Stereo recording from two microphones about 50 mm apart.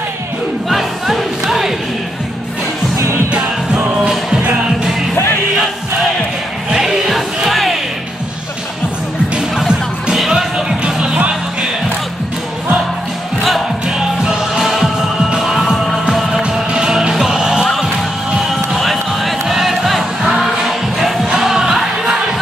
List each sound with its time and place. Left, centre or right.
0.7 s music: centre
6.7 s music: centre
10.1 s music: centre
13.8 s music: centre
16.4 s music: centre
18.3 s music: centre